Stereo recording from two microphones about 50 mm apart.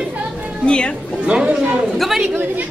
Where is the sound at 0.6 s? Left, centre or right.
Centre.